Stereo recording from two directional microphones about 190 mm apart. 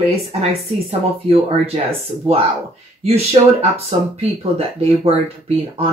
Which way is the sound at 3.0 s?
30° right (ahead or behind).